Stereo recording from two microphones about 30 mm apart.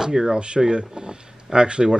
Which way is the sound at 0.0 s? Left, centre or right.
Centre.